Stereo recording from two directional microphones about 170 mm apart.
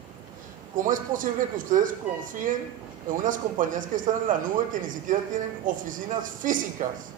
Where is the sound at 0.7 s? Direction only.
50° right (ahead or behind).